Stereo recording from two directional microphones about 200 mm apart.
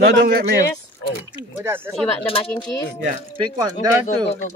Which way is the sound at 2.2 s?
30° left (ahead or behind).